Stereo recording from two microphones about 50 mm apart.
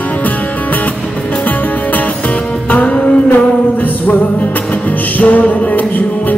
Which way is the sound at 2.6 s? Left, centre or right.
Left.